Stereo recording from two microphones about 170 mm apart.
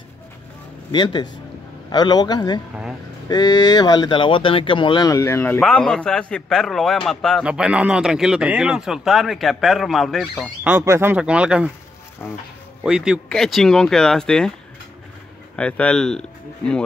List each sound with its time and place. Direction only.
0.9 s speech: 25° left (ahead or behind)
2.7 s a man's voice: 5° right (ahead or behind)
3.3 s speech: 25° left (ahead or behind)
5.6 s a man's voice: 5° left (ahead or behind)
10.7 s speech: 15° right (ahead or behind)
12.2 s speech: 10° left (ahead or behind)
12.8 s a man's voice: 5° right (ahead or behind)
15.5 s a man's voice: 5° left (ahead or behind)